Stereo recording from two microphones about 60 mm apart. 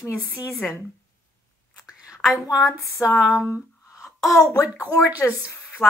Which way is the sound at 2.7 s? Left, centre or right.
Left.